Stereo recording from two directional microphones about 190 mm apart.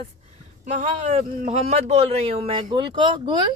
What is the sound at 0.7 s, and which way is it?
A man's voice, 40° right (ahead or behind).